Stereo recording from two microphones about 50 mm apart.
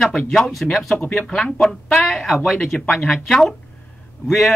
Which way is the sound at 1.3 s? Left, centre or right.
Centre.